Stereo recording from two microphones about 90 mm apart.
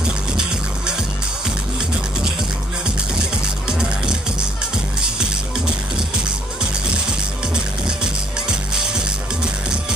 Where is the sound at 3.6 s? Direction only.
10° right (ahead or behind).